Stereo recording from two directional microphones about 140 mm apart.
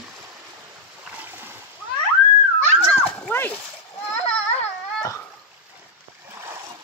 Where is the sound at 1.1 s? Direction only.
15° right (ahead or behind).